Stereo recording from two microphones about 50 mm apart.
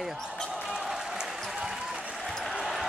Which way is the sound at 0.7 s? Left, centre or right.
Centre.